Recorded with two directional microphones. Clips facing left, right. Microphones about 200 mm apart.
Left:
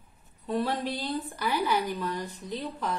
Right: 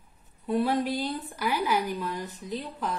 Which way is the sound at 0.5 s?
5° right (ahead or behind).